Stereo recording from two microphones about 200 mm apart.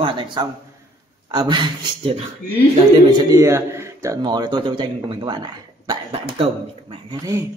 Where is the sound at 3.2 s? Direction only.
15° right (ahead or behind).